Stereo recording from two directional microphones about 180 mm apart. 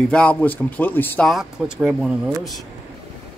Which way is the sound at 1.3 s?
Centre (ahead or behind).